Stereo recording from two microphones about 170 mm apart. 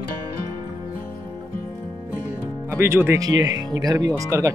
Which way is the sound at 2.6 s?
15° right (ahead or behind).